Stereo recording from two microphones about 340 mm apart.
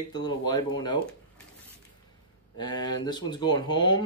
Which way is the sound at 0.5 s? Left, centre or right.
Centre.